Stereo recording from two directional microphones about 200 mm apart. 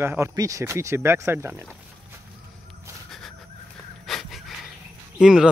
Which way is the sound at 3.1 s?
Centre (ahead or behind).